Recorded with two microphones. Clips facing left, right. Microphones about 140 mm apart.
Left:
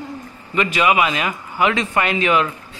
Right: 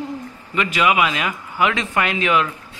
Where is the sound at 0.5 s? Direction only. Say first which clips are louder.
Left 1 dB; centre (ahead or behind).